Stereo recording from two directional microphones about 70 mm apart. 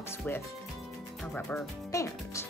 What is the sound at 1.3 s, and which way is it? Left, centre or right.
Speech, centre.